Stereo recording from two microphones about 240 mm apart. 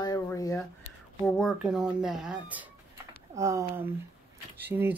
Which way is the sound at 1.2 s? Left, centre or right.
Centre.